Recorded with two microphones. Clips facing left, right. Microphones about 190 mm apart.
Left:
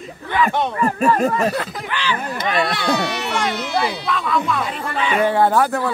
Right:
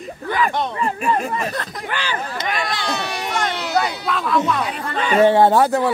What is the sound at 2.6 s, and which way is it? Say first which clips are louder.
Speech: left 5 dB; 65° left (ahead or behind).